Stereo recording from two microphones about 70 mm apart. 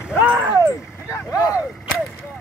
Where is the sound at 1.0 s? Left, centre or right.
Left.